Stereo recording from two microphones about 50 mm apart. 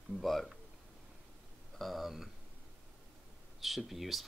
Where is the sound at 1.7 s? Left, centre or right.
Centre.